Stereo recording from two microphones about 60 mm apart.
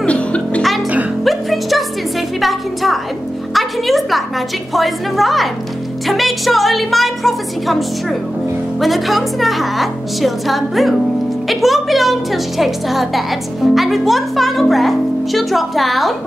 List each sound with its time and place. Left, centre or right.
0.0 s music: left
1.2 s music: centre
3.5 s speech: centre